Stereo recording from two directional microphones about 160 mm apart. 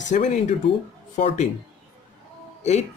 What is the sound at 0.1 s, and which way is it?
Speech, 50° left (ahead or behind).